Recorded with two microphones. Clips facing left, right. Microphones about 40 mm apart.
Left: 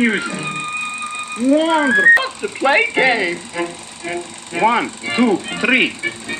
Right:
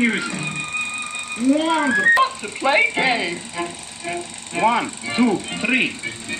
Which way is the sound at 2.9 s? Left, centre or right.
Left.